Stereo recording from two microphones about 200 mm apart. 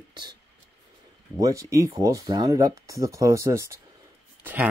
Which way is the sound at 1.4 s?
15° right (ahead or behind).